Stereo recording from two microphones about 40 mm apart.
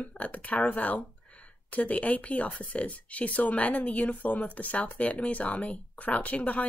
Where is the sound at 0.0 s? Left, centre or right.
Left.